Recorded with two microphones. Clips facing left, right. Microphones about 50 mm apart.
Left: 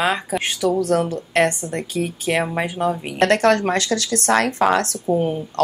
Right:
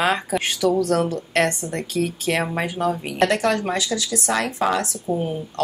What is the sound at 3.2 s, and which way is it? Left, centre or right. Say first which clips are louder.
A woman's voice: left 4 dB; left.